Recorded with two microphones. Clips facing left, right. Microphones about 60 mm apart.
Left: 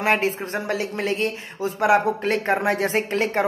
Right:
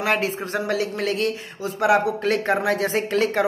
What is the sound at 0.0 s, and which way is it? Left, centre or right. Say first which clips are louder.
A man's voice: left 1 dB; left.